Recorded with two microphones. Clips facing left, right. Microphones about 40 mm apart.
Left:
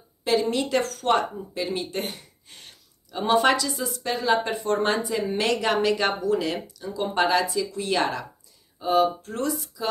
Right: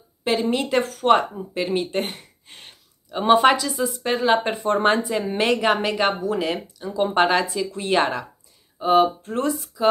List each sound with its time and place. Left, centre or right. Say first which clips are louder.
0.5 s speech: right 3 dB; right
4.0 s speech: right 3 dB; right